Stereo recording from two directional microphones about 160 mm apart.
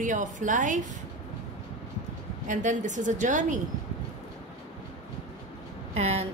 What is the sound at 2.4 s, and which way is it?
A woman's voice, 50° right (ahead or behind).